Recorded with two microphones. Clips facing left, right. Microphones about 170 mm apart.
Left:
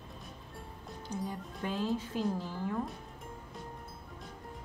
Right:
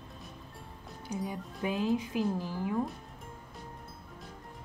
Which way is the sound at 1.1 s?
10° right (ahead or behind).